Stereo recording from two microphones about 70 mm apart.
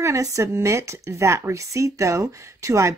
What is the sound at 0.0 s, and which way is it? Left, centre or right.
Speech, right.